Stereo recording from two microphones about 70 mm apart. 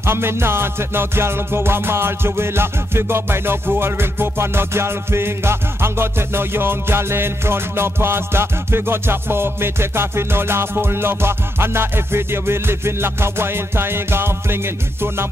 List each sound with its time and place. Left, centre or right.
0.0 s music: right